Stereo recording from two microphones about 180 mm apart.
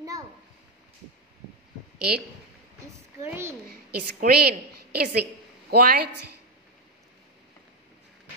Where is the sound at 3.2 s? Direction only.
15° right (ahead or behind).